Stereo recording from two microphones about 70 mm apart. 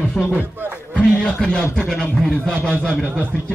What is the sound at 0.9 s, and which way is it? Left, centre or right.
Speech, centre.